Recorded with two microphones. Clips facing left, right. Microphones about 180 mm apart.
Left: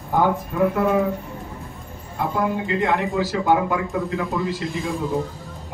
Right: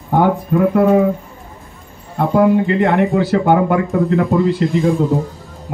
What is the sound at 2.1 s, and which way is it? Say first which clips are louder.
Speech: right 10 dB; 60° right (ahead or behind).